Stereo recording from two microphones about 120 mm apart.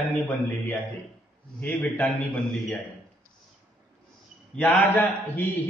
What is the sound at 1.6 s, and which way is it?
Speech, 10° left (ahead or behind).